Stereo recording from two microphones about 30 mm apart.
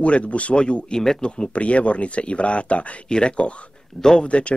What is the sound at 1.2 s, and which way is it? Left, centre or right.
Speech, left.